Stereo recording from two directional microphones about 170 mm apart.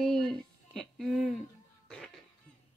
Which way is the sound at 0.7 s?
Centre (ahead or behind).